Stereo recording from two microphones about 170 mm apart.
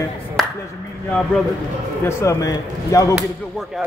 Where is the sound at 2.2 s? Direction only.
20° left (ahead or behind).